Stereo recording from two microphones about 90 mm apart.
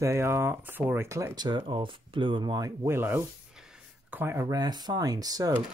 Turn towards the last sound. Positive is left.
turn(degrees=-45)  # may be behind; listen again after turning